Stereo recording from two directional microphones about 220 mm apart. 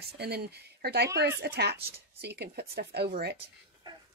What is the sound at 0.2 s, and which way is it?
Speech, 50° right (ahead or behind).